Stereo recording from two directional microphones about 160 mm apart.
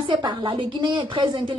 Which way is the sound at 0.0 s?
30° right (ahead or behind).